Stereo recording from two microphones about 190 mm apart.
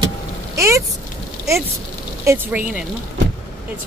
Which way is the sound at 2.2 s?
10° right (ahead or behind).